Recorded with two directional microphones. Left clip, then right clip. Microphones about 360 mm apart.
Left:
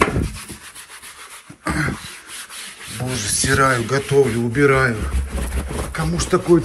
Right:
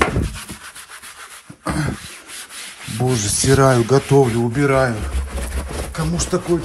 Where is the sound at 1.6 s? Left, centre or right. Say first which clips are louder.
Left 2 dB; centre.